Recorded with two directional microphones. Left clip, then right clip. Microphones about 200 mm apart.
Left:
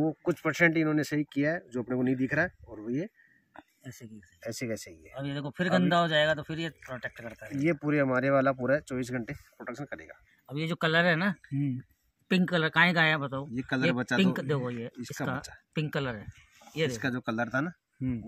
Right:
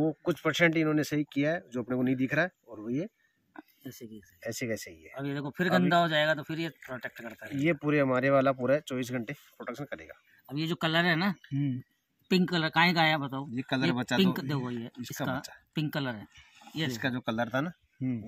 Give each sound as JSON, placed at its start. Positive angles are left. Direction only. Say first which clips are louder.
{"t": 0.0, "sound": "speech", "louder": "even", "side_deg": 0}
{"t": 4.4, "sound": "speech", "louder": "right 1 dB", "side_deg": 0}
{"t": 5.1, "sound": "a man's voice", "louder": "even", "side_deg": 40}
{"t": 7.5, "sound": "speech", "louder": "even", "side_deg": 0}
{"t": 10.4, "sound": "a man's voice", "louder": "left 1 dB", "side_deg": 45}
{"t": 11.4, "sound": "speech", "louder": "even", "side_deg": -5}
{"t": 12.3, "sound": "a man's voice", "louder": "left 1 dB", "side_deg": 45}
{"t": 13.6, "sound": "speech", "louder": "left 1 dB", "side_deg": -5}
{"t": 14.4, "sound": "a man's voice", "louder": "left 4 dB", "side_deg": 40}
{"t": 17.0, "sound": "speech", "louder": "even", "side_deg": -10}